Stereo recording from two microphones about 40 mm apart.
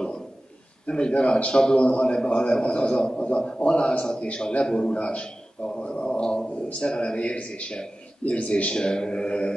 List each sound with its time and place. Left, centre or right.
0.8 s a man's voice: left
1.9 s a man's voice: left
8.7 s a man's voice: left